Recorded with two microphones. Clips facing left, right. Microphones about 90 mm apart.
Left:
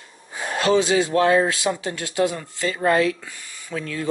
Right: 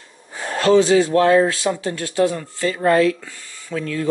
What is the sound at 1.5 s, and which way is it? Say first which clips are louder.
Speech: right 2 dB; 15° left (ahead or behind).